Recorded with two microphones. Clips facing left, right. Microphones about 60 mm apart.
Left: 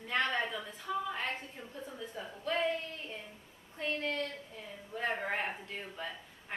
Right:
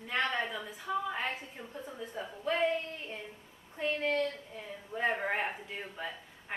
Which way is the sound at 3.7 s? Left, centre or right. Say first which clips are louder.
Right 4 dB; centre.